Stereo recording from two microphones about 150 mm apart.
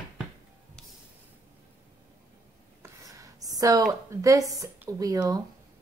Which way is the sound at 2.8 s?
20° right (ahead or behind).